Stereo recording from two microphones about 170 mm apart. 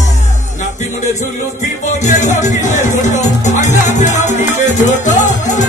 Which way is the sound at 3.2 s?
45° left (ahead or behind).